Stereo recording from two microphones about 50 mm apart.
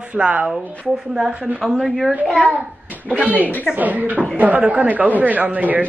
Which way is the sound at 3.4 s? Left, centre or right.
Left.